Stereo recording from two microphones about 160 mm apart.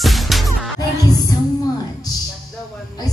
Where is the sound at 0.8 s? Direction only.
25° left (ahead or behind).